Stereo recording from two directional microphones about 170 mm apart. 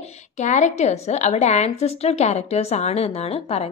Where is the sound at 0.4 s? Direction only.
45° left (ahead or behind).